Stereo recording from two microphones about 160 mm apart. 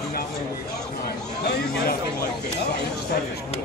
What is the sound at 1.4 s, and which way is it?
Chatter, 85° left.